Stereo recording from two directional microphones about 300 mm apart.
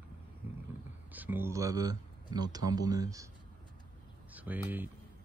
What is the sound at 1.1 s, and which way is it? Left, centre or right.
Speech, centre.